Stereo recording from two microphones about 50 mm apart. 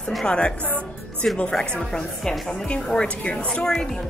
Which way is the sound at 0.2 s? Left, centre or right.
Centre.